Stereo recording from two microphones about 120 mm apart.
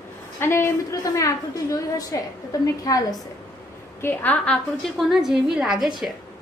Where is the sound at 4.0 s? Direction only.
15° left (ahead or behind).